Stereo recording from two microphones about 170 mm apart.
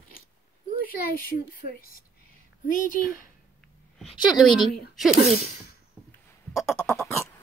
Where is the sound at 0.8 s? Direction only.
60° left (ahead or behind).